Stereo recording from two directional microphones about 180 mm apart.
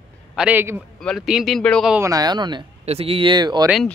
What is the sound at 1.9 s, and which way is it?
Speech, 20° right (ahead or behind).